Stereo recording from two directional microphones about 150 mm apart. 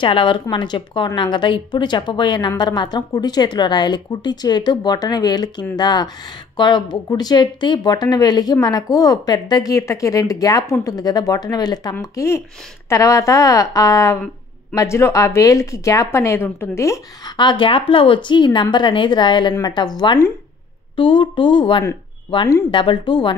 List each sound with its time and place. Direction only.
0.0 s a woman's voice: 35° left (ahead or behind)